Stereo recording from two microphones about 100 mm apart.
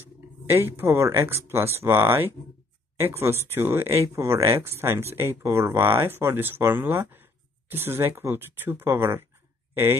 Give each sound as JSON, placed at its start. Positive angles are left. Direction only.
{"t": 0.5, "sound": "speech", "side_deg": -25}